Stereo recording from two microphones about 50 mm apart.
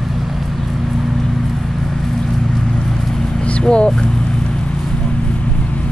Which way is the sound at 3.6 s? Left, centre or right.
Centre.